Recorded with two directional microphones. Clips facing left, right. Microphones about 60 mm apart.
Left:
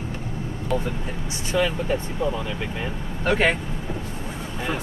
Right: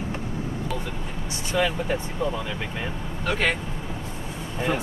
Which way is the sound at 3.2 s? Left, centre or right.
Left.